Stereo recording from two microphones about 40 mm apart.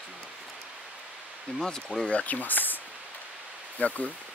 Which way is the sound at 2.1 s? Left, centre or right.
Left.